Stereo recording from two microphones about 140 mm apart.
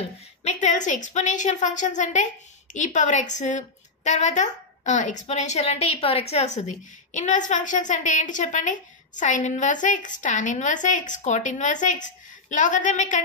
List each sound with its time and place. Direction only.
0.4 s a woman's voice: 55° left (ahead or behind)